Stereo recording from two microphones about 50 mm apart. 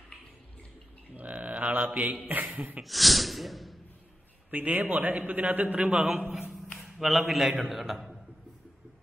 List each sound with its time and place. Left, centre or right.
1.1 s mantra: right
2.2 s a man's voice: right
2.8 s speech: centre
4.5 s a man's voice: right
7.0 s a man's voice: centre